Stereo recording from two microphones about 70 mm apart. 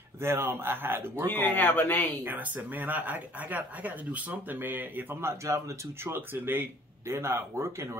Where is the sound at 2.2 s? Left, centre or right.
Right.